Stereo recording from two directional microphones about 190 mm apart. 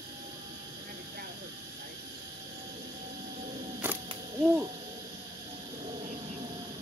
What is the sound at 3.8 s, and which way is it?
Camera, 10° right (ahead or behind).